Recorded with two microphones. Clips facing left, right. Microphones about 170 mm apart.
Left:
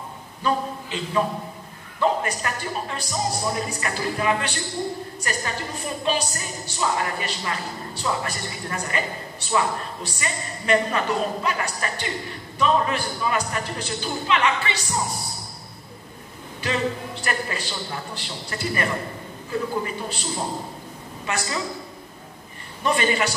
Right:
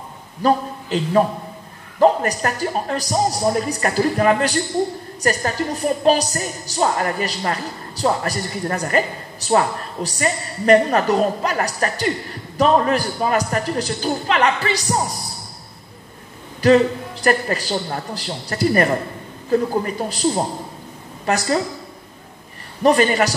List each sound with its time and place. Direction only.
0.4 s a woman's voice: 40° right (ahead or behind)
16.6 s a woman's voice: 40° right (ahead or behind)
22.8 s a woman's voice: 40° right (ahead or behind)